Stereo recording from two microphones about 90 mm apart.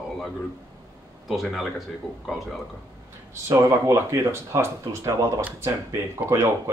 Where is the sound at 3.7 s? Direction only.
35° right (ahead or behind).